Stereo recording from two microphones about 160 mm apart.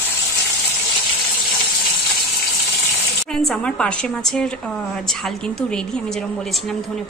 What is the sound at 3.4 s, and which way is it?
A woman's voice, 5° left (ahead or behind).